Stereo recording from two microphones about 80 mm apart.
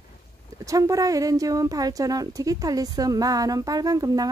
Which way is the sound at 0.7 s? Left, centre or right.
Right.